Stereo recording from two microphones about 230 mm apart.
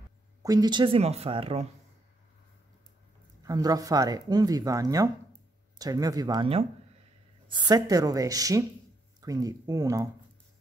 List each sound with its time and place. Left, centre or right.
0.4 s speech: centre
3.4 s speech: centre